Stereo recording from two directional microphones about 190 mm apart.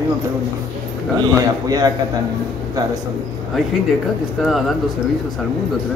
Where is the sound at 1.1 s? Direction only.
20° right (ahead or behind).